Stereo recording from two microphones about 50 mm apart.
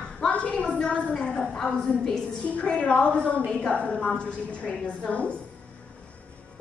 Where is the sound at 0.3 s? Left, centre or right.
Left.